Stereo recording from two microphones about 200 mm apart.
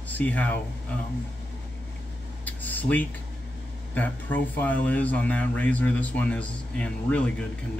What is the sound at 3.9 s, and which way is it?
Speech, 10° left (ahead or behind).